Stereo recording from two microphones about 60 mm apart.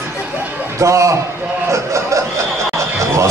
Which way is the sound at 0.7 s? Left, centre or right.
Right.